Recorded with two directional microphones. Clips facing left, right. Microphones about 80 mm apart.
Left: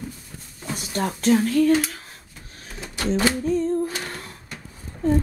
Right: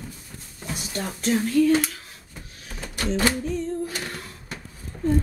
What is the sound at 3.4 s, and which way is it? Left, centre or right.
Music, left.